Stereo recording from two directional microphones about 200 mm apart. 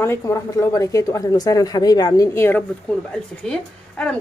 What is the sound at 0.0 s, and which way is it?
Speech, 15° left (ahead or behind).